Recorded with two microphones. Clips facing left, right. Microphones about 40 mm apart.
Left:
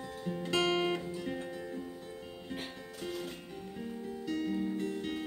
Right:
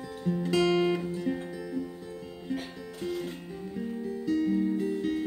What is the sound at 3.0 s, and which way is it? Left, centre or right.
Music, centre.